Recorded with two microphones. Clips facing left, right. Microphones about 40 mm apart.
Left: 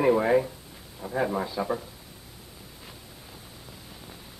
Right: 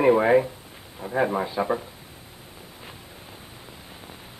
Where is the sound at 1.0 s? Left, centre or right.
Right.